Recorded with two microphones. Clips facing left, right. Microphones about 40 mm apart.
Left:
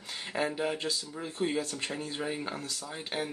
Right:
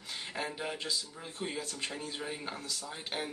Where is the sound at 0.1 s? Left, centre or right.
Centre.